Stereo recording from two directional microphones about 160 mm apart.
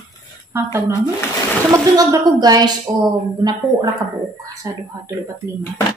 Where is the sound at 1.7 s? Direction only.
20° right (ahead or behind).